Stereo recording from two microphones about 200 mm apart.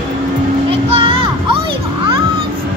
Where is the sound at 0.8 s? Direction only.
25° right (ahead or behind).